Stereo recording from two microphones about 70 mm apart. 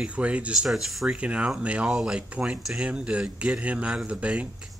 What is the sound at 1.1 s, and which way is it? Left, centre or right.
Speech, centre.